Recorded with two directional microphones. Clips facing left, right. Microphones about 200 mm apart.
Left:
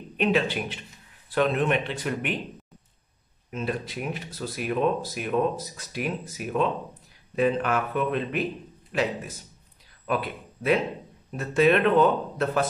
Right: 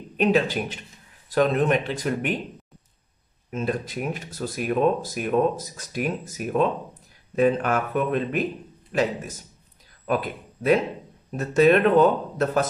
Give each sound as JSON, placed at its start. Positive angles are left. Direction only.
{"t": 0.2, "sound": "speech", "side_deg": -40}
{"t": 3.5, "sound": "speech", "side_deg": -45}